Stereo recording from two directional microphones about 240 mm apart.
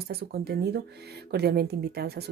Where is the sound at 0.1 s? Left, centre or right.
Right.